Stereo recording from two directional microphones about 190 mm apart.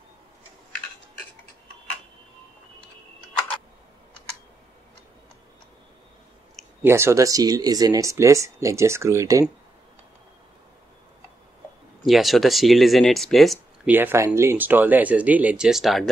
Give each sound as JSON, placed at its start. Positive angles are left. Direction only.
{"t": 6.8, "sound": "speech", "side_deg": -15}
{"t": 12.1, "sound": "speech", "side_deg": 0}
{"t": 13.9, "sound": "speech", "side_deg": -10}